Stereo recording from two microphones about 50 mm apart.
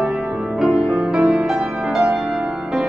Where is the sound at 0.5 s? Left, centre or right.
Centre.